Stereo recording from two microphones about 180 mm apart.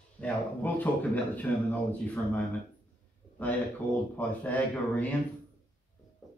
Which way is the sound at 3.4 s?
10° left (ahead or behind).